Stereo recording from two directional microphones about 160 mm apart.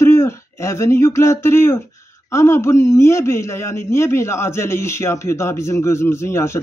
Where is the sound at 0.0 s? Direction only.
15° left (ahead or behind).